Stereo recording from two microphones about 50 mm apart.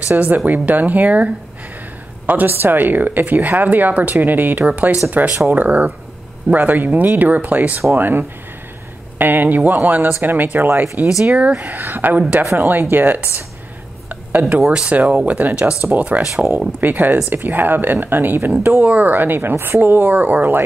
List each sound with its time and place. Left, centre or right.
0.1 s speech: right
11.1 s speech: centre
11.3 s speech: right
14.9 s speech: right
16.2 s speech: centre
16.5 s speech: right